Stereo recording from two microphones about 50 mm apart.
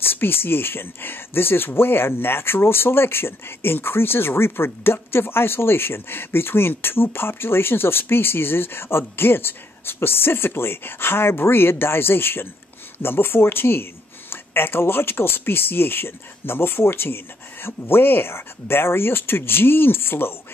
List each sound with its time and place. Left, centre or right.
0.0 s speech: left